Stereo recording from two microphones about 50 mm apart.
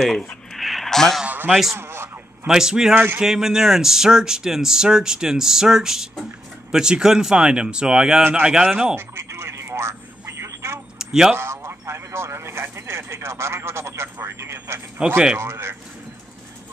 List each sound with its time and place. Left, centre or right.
0.0 s speech: centre
0.5 s a sound: centre
1.8 s a sound: right
2.4 s speech: centre
8.2 s speech: right
8.5 s speech: centre
8.9 s telephone: right
11.0 s a sound: centre
11.3 s speech: right
15.0 s speech: centre
15.3 s speech: right